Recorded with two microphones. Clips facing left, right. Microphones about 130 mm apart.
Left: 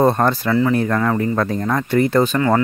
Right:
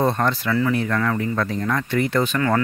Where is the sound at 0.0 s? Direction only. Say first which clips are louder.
Left 5 dB; 45° left (ahead or behind).